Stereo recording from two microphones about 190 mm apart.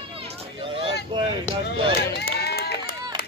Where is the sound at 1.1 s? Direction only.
25° right (ahead or behind).